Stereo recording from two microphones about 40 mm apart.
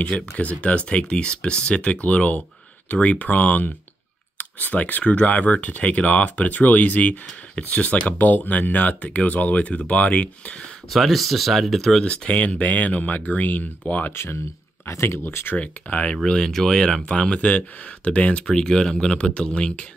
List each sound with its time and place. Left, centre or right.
0.0 s speech: left
10.9 s speech: centre
12.3 s speech: left
15.0 s speech: left
15.5 s speech: left
16.3 s speech: centre
17.5 s speech: left
18.5 s speech: centre